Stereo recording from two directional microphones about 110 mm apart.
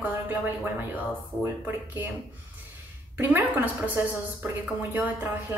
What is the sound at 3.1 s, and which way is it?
Speech, 20° right (ahead or behind).